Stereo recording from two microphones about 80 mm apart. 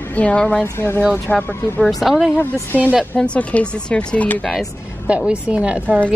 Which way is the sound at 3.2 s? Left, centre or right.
Centre.